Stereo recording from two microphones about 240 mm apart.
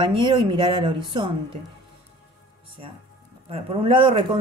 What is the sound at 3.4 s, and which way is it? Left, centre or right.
Speech, right.